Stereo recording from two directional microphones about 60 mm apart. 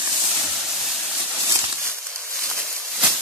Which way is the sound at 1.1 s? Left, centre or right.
Right.